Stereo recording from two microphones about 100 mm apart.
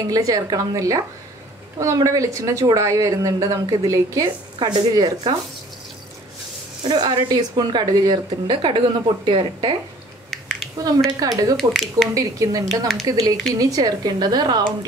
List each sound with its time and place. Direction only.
0.1 s a woman's voice: 35° right (ahead or behind)
4.6 s speech: 45° right (ahead or behind)
6.8 s speech: 45° right (ahead or behind)
10.8 s a woman's voice: 35° right (ahead or behind)
11.5 s speech: centre (ahead or behind)
12.1 s a woman's voice: 35° right (ahead or behind)